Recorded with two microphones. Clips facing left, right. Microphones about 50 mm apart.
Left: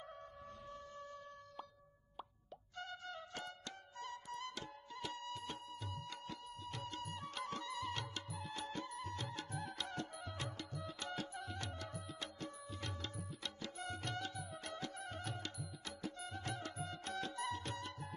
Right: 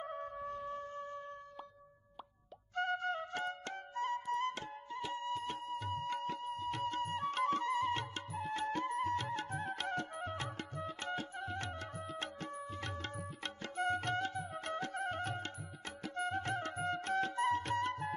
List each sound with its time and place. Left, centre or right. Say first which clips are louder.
0.7 s music: right 9 dB; right
2.7 s music: right 13 dB; right